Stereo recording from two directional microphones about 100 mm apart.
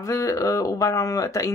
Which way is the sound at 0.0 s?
30° left (ahead or behind).